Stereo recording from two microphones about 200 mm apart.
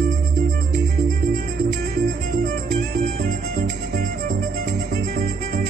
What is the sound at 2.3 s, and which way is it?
Music, 45° right (ahead or behind).